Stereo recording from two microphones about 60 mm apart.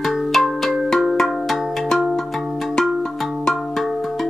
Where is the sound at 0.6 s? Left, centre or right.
Centre.